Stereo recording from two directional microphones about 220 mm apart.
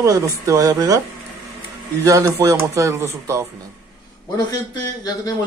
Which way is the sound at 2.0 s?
15° right (ahead or behind).